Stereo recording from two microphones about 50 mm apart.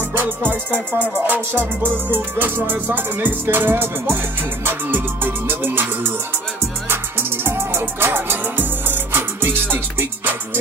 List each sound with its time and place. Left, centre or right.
0.2 s music: right